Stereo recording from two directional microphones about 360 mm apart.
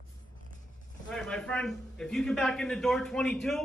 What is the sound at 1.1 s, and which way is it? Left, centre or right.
A man's voice, centre.